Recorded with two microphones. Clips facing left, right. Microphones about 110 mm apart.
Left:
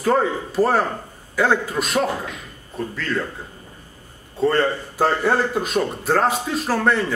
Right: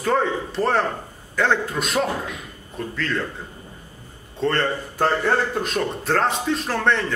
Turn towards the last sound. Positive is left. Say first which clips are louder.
# left 2 dB
turn(degrees=5)  # may be behind; listen again after turning